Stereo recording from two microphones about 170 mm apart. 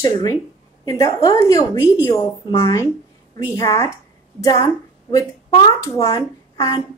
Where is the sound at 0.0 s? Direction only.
20° left (ahead or behind).